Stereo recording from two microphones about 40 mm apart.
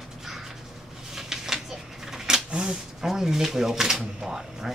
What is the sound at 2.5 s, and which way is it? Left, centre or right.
Speech, centre.